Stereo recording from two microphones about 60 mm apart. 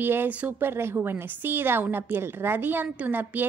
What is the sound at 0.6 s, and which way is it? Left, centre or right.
A woman's voice, right.